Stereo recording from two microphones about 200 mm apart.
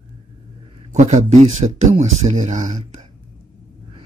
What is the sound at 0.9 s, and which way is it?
Speech, 35° right (ahead or behind).